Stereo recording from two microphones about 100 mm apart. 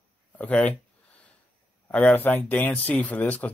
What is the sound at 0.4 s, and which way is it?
Speech, 15° left (ahead or behind).